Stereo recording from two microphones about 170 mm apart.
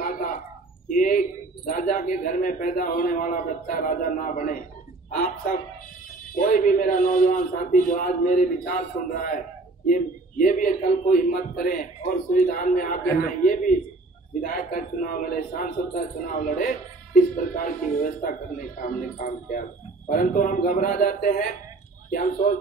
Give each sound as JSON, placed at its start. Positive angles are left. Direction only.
{"t": 0.0, "sound": "a sound", "side_deg": 60}
{"t": 0.8, "sound": "bow-wow", "side_deg": 50}
{"t": 1.7, "sound": "a man's voice", "side_deg": 55}
{"t": 6.3, "sound": "a man's voice", "side_deg": 55}
{"t": 9.8, "sound": "a man's voice", "side_deg": 50}